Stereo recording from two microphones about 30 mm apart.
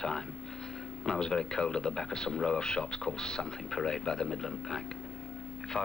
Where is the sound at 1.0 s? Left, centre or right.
Left.